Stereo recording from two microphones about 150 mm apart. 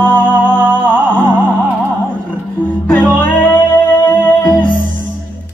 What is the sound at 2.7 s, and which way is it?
Music, 10° left (ahead or behind).